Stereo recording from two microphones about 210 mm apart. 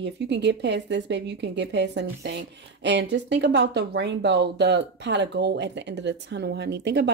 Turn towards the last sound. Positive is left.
turn(degrees=-55)  # may be behind; listen again after turning